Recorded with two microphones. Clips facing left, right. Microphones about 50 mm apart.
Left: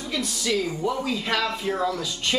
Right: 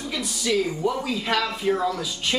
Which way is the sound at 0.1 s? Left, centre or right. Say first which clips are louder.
Right 1 dB; centre.